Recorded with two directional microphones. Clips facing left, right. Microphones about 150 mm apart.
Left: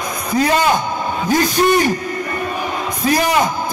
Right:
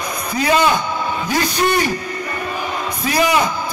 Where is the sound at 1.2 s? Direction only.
45° left (ahead or behind).